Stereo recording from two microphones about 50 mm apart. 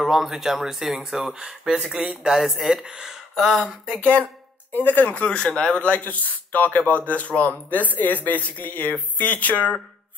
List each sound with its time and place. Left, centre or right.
0.0 s speech: centre
3.3 s speech: centre
4.7 s speech: left